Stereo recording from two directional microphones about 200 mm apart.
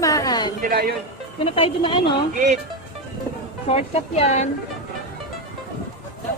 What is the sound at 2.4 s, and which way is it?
Speech, 35° right (ahead or behind).